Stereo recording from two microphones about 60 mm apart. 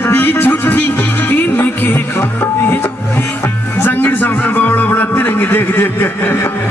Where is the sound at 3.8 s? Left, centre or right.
Left.